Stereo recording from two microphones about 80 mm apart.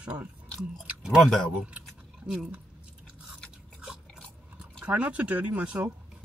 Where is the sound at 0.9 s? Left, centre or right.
Centre.